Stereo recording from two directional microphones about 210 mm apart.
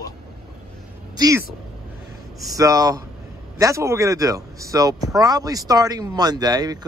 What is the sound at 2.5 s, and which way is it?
Speech, 15° right (ahead or behind).